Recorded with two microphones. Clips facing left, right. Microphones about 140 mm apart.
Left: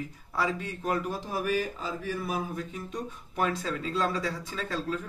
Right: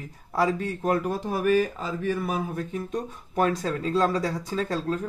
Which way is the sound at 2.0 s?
60° right (ahead or behind).